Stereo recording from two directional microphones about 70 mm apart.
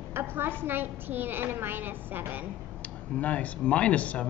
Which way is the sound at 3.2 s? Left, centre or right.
Centre.